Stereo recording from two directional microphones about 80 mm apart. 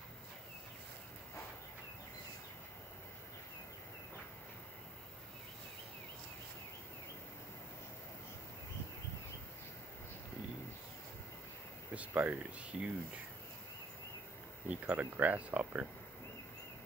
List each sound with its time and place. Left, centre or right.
11.9 s speech: centre
14.7 s speech: centre